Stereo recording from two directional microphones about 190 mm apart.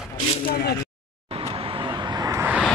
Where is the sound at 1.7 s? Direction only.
20° right (ahead or behind).